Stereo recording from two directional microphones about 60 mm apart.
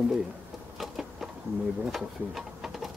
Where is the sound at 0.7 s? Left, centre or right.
Centre.